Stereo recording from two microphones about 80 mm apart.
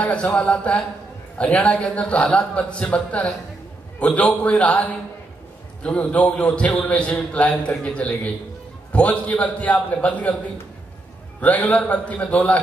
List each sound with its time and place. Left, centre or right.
0.0 s a man's voice: centre
11.4 s a man's voice: centre